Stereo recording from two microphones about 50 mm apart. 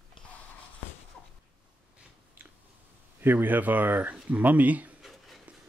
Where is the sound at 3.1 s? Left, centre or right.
Right.